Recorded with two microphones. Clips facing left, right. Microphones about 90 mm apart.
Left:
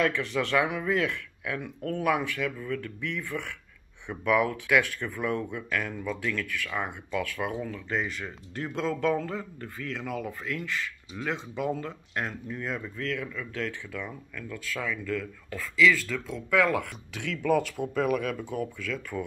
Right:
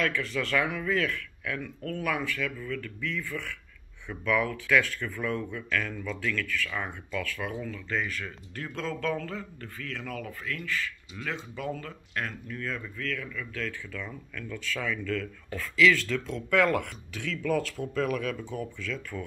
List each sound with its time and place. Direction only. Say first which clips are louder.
0.0 s speech: left 3 dB; 25° left (ahead or behind); by 19.2 s 5° left (ahead or behind)